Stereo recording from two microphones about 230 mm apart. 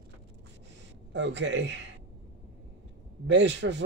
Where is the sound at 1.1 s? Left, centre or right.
Right.